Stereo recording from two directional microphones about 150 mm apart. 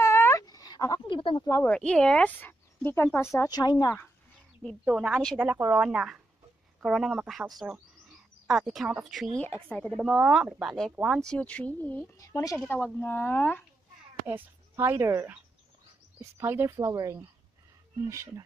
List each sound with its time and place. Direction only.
0.0 s a sound: 15° left (ahead or behind); by 1.4 s 35° left (ahead or behind)
1.4 s speech: 20° left (ahead or behind)
1.7 s speech: 5° left (ahead or behind); by 3.9 s 25° left (ahead or behind)
4.8 s speech: 5° right (ahead or behind)
9.4 s speech: 10° left (ahead or behind)
12.2 s speech: 20° left (ahead or behind)
12.5 s speech: 10° left (ahead or behind)
14.2 s speech: 15° right (ahead or behind)